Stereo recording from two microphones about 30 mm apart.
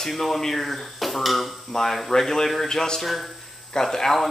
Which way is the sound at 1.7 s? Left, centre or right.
Centre.